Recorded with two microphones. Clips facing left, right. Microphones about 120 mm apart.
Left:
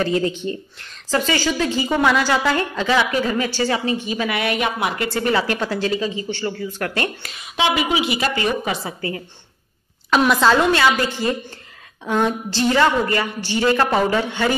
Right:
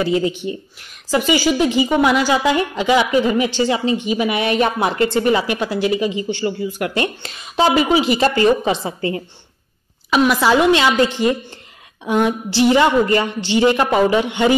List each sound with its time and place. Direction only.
0.0 s a woman's voice: 15° right (ahead or behind)
4.6 s a woman's voice: 35° right (ahead or behind); by 7.1 s 15° right (ahead or behind)
7.2 s a woman's voice: 35° right (ahead or behind)
10.1 s a woman's voice: 5° right (ahead or behind)
10.5 s a woman's voice: 15° right (ahead or behind)